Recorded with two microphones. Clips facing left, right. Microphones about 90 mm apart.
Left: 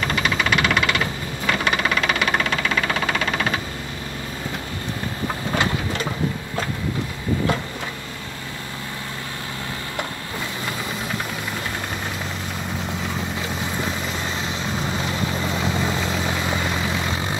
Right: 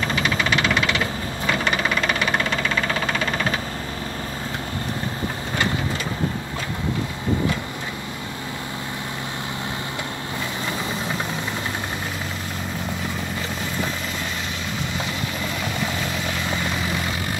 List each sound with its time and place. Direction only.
0.2 s engine knocking: 5° left (ahead or behind)
15.5 s vehicle: 25° left (ahead or behind)